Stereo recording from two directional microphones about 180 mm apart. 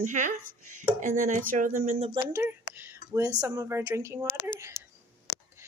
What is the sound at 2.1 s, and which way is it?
A woman's voice, 15° right (ahead or behind).